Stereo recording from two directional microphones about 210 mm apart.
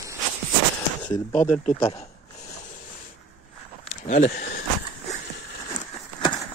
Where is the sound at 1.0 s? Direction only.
5° left (ahead or behind).